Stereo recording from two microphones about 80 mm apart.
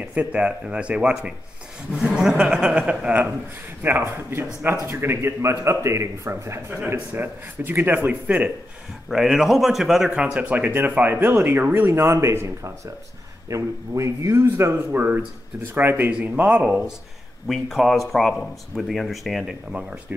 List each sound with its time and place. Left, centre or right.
0.0 s a man's voice: centre
9.1 s a man's voice: centre
17.5 s speech: centre
19.7 s speech: centre